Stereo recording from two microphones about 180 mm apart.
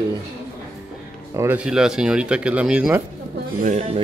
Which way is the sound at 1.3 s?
15° right (ahead or behind).